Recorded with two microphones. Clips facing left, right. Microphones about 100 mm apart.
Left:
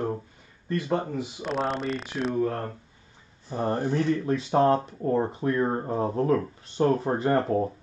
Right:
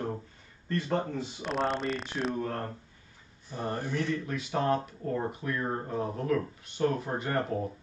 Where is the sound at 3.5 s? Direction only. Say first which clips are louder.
Left 7 dB; 30° left (ahead or behind).